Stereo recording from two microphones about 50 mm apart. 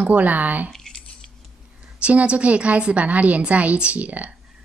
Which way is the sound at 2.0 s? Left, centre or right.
Right.